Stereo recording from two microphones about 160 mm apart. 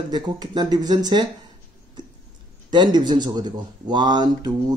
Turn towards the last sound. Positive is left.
turn(degrees=-25)  # may be behind; listen again after turning